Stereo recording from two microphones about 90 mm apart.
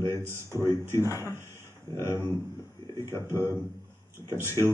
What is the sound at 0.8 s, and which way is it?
A man's voice, 35° left (ahead or behind).